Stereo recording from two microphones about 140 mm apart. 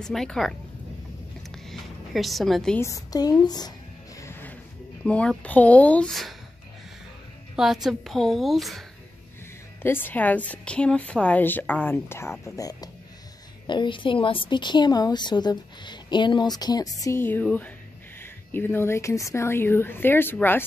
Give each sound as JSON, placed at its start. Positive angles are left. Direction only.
{"t": 0.0, "sound": "a woman's voice", "side_deg": 5}
{"t": 1.5, "sound": "a sound", "side_deg": 0}
{"t": 2.8, "sound": "a woman's voice", "side_deg": 25}
{"t": 4.2, "sound": "music", "side_deg": 15}
{"t": 5.0, "sound": "a woman's voice", "side_deg": 5}
{"t": 7.5, "sound": "a woman's voice", "side_deg": 0}
{"t": 9.8, "sound": "a woman's voice", "side_deg": 15}
{"t": 17.0, "sound": "a woman's voice", "side_deg": 15}